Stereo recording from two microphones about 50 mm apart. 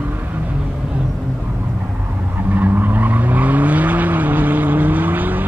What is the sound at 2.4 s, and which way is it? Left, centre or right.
Vehicle, right.